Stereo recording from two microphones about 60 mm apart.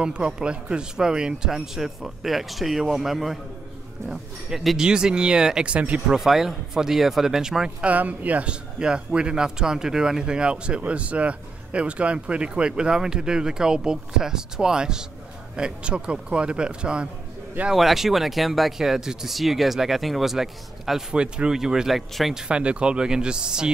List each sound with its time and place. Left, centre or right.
0.0 s speech: centre
6.1 s speech: centre
7.8 s speech: right
17.6 s speech: centre
22.5 s speech: centre